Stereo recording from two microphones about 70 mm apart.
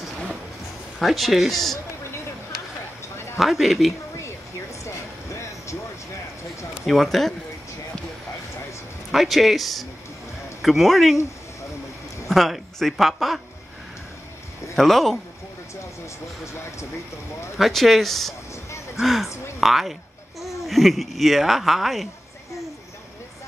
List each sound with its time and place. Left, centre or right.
0.9 s speech: centre
3.3 s speech: centre
4.8 s vehicle: left
6.9 s speech: centre
9.1 s speech: centre
12.3 s speech: centre
14.8 s speech: centre
17.6 s speech: centre
19.6 s babbling: centre
20.6 s speech: centre